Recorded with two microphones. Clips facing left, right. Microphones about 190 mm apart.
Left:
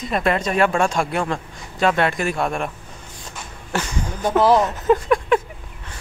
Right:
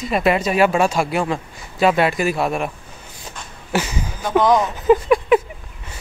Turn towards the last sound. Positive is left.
turn(degrees=-5)  # may be behind; listen again after turning